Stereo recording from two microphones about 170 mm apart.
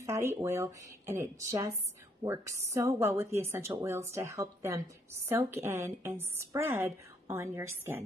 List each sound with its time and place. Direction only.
0.0 s a woman's voice: 15° right (ahead or behind)